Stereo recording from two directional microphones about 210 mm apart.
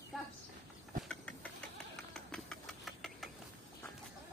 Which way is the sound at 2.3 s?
5° left (ahead or behind).